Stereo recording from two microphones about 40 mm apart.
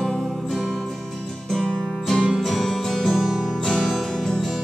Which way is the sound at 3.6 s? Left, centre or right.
Centre.